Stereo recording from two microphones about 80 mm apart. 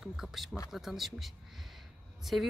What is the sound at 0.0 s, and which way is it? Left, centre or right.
Speech, centre.